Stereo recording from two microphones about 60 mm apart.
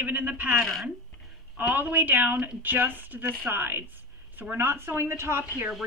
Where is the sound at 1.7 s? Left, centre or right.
Right.